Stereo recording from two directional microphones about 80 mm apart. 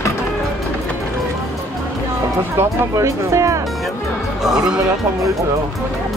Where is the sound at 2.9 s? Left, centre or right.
Right.